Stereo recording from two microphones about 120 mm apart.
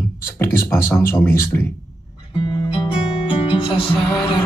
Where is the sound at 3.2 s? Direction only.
45° left (ahead or behind).